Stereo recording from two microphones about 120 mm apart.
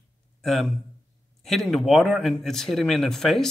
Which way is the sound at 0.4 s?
Centre (ahead or behind).